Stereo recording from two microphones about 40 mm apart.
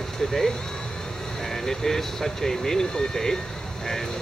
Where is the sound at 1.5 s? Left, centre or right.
Centre.